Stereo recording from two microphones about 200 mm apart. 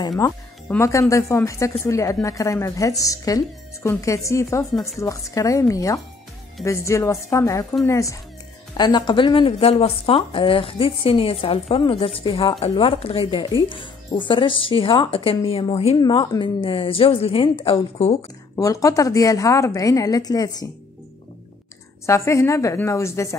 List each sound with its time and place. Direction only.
0.7 s speech: 15° left (ahead or behind); by 18.2 s 30° left (ahead or behind)
18.6 s speech: 15° left (ahead or behind)
22.0 s speech: 15° left (ahead or behind)